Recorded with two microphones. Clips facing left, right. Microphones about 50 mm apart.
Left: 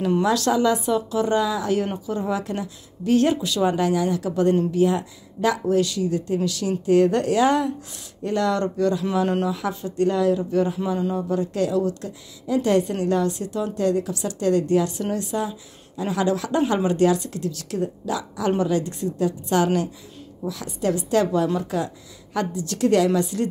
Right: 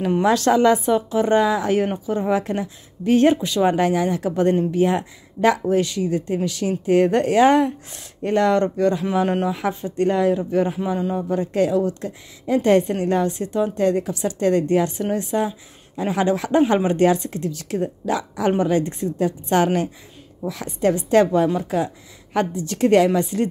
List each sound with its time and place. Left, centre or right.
0.2 s a woman's voice: right
18.0 s speech: right
21.5 s a woman's voice: centre